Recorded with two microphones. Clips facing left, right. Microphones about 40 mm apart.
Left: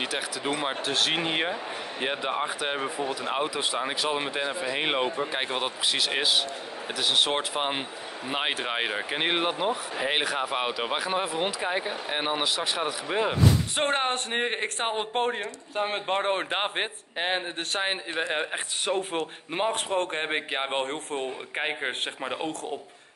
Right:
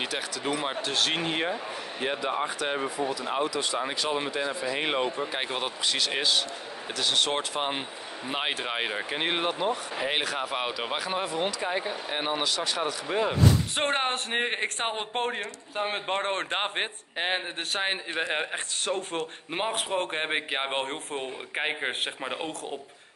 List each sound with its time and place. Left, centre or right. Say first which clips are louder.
0.0 s speech: left 1 dB; centre
1.2 s speech: left 1 dB; centre
13.7 s speech: left 1 dB; centre
18.5 s speech: left 2 dB; centre
19.5 s speech: left 2 dB; centre